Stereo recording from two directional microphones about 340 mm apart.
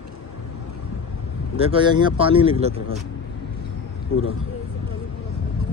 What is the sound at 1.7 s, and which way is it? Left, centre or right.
Speech, centre.